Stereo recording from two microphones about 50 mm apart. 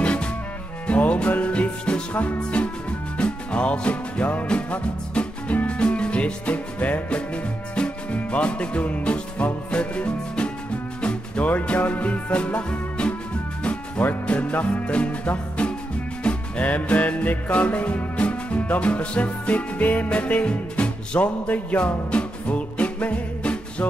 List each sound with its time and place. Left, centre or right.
0.0 s music: left